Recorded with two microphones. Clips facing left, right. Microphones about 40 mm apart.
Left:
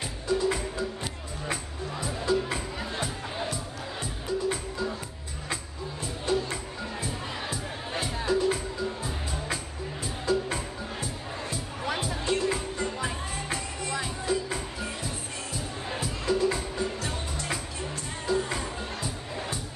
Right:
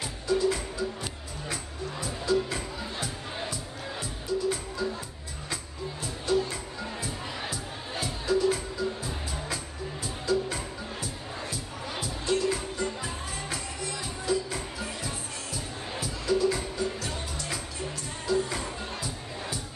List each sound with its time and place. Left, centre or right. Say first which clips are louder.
0.3 s music: right 1 dB; left
6.2 s music: right 1 dB; left
10.0 s music: left 1 dB; left
14.2 s music: right 3 dB; left